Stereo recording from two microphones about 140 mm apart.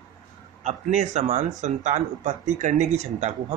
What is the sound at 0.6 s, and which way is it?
Speech, 55° right (ahead or behind).